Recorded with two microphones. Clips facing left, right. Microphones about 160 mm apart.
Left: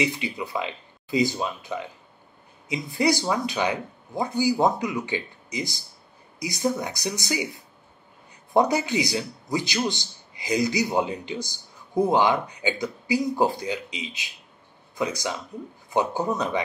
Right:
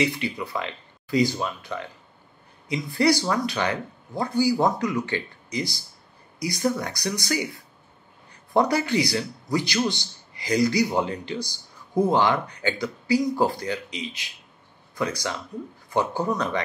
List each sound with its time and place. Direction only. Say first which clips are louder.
0.0 s speech: right 1 dB; 15° left (ahead or behind)